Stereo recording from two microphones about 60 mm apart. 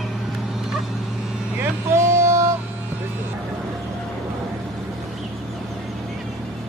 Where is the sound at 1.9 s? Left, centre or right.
Right.